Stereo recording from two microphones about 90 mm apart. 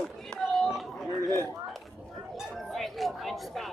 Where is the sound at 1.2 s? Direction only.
35° right (ahead or behind).